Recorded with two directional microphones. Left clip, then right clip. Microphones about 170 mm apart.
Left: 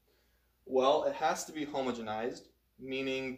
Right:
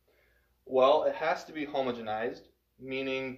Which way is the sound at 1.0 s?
30° left (ahead or behind).